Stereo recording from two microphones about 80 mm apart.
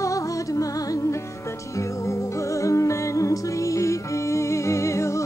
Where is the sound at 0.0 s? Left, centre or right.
Left.